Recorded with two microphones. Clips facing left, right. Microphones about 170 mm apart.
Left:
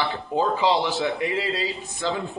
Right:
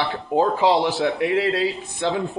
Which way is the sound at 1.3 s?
60° right (ahead or behind).